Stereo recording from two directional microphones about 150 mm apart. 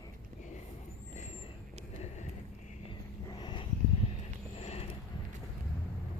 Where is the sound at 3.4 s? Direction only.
30° left (ahead or behind).